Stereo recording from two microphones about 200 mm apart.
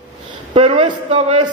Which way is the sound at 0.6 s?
25° right (ahead or behind).